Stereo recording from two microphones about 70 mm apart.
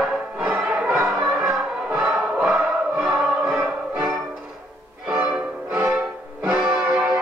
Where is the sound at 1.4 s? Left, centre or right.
Centre.